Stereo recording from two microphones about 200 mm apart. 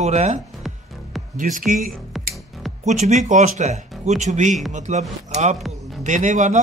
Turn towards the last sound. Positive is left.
turn(degrees=-35)  # may be behind; listen again after turning